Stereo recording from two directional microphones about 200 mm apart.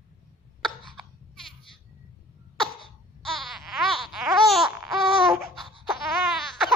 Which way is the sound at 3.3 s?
Centre (ahead or behind).